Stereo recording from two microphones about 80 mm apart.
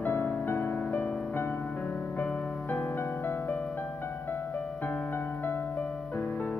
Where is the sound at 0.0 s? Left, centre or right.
Left.